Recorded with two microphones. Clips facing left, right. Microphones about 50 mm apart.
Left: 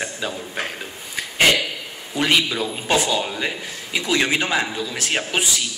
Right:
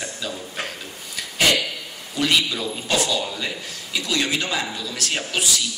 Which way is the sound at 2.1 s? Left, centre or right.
Left.